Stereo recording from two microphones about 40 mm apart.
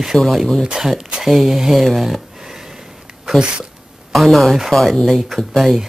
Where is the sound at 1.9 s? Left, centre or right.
Centre.